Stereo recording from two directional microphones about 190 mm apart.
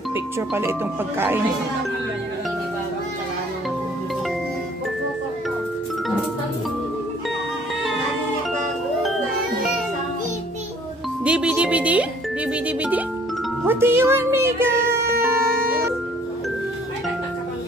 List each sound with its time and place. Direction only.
0.1 s speech: 10° right (ahead or behind)
11.2 s music: 5° right (ahead or behind)
12.6 s speech: 5° right (ahead or behind)
15.0 s a sound: 55° right (ahead or behind)